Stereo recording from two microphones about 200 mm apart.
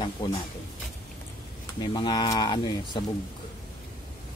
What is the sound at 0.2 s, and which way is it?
Speech, 25° left (ahead or behind).